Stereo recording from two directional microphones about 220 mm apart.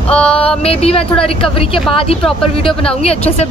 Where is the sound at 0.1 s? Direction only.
5° left (ahead or behind).